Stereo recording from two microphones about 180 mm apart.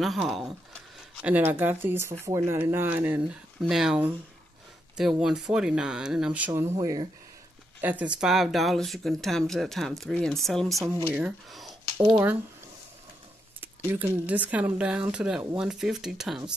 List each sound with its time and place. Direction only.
0.0 s speech: centre (ahead or behind)
6.8 s speech: 20° right (ahead or behind)
7.8 s speech: 10° right (ahead or behind)
13.9 s speech: 10° right (ahead or behind)